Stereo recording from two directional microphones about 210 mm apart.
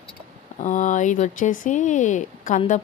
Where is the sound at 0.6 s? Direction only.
35° left (ahead or behind).